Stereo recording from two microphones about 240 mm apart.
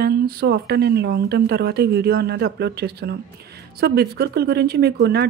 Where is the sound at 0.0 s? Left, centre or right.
Right.